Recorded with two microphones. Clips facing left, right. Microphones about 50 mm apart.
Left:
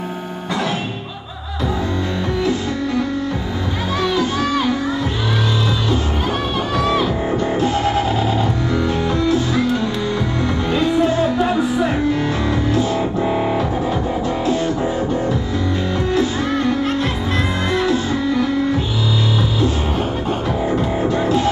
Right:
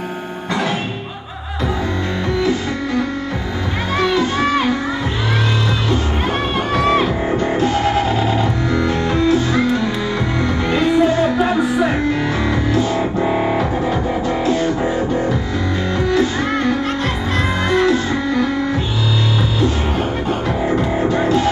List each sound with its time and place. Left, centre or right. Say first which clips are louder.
4.0 s music: right 3 dB; right
6.8 s music: right 2 dB; right
10.7 s music: right 2 dB; right
13.2 s music: right 2 dB; right
17.6 s music: right 4 dB; right